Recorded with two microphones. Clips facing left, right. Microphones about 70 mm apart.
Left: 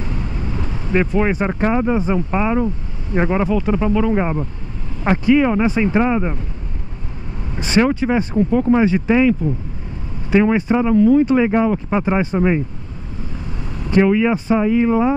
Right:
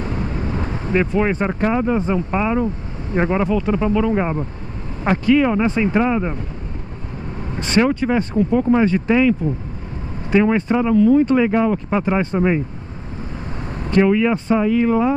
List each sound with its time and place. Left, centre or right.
0.0 s vehicle: right
0.9 s speech: centre
7.5 s speech: centre
8.5 s speech: centre
8.7 s speech: centre
10.3 s speech: centre
14.0 s speech: centre